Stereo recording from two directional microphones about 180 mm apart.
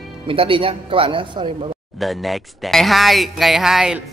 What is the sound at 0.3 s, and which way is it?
Speech, 30° right (ahead or behind).